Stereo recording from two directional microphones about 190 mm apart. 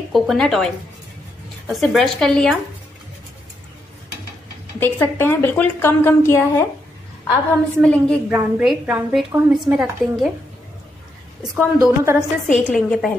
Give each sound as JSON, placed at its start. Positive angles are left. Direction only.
{"t": 0.1, "sound": "speech", "side_deg": 0}
{"t": 4.7, "sound": "a woman's voice", "side_deg": 10}
{"t": 7.8, "sound": "speech", "side_deg": 5}
{"t": 8.3, "sound": "a woman's voice", "side_deg": -5}
{"t": 11.5, "sound": "a woman's voice", "side_deg": -10}
{"t": 12.5, "sound": "speech", "side_deg": 5}